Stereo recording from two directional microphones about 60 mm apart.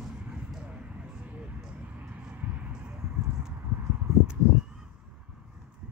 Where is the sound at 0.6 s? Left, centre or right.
Centre.